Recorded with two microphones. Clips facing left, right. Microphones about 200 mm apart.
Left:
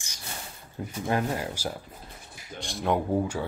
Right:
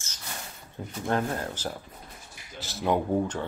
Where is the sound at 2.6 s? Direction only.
Centre (ahead or behind).